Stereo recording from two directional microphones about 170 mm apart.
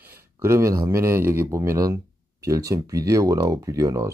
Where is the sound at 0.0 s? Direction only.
15° right (ahead or behind).